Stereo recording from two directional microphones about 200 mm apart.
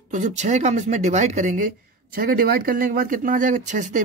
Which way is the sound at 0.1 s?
40° right (ahead or behind).